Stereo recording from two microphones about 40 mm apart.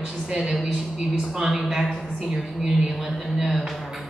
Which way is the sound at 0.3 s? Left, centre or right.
Centre.